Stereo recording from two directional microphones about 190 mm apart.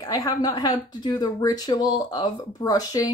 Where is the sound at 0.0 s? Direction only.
20° left (ahead or behind).